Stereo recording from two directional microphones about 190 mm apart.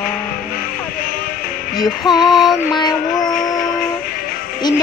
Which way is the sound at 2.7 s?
20° left (ahead or behind).